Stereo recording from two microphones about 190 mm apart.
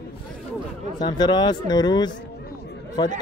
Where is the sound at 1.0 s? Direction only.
20° left (ahead or behind).